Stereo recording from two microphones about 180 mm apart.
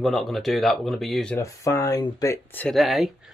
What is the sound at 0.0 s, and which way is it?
Speech, centre (ahead or behind).